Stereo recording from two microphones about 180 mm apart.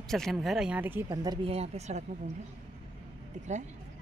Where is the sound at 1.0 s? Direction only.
25° right (ahead or behind).